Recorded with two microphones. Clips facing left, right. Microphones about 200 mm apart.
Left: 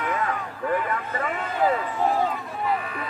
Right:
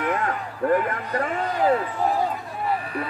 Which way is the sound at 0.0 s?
55° right (ahead or behind).